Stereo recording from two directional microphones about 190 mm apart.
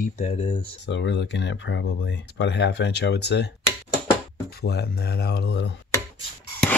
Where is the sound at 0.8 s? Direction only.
65° left (ahead or behind).